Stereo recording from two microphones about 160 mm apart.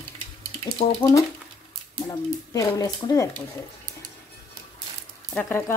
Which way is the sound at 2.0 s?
20° left (ahead or behind).